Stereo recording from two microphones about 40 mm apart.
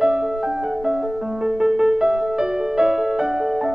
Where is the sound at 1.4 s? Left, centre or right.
Centre.